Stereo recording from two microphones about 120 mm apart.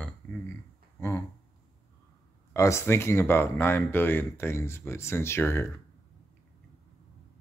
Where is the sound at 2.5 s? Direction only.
25° left (ahead or behind).